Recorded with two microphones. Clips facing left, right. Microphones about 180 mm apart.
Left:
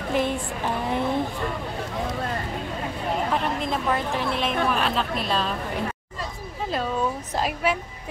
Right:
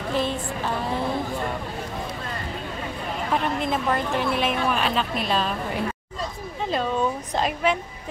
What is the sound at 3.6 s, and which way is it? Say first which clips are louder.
A woman's voice: right 1 dB; centre (ahead or behind).